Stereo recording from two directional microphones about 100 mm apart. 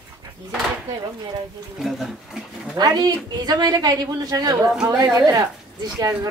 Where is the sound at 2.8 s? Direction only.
40° right (ahead or behind).